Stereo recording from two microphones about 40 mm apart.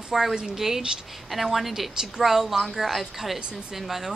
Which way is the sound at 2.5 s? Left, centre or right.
Centre.